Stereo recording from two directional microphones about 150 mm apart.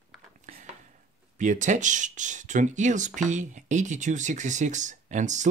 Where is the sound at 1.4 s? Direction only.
55° right (ahead or behind).